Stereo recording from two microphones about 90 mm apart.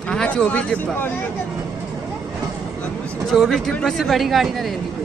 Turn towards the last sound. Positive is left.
turn(degrees=0)  # may be behind; listen again after turning